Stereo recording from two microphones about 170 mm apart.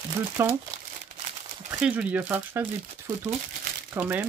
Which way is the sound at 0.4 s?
15° right (ahead or behind).